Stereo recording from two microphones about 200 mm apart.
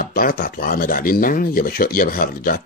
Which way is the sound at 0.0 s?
45° left (ahead or behind).